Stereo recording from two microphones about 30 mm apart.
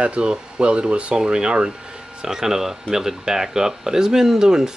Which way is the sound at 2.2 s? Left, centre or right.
Right.